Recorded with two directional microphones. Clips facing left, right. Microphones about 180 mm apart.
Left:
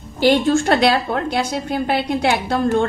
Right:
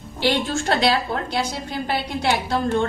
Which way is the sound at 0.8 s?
55° left (ahead or behind).